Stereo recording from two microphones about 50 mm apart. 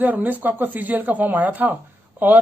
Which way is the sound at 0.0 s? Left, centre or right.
Right.